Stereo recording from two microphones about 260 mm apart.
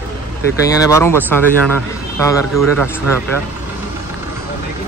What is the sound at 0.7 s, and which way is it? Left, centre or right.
A man's voice, centre.